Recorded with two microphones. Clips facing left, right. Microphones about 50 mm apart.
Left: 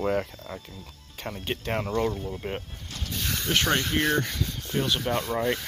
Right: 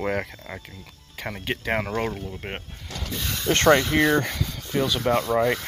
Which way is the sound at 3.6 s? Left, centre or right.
Right.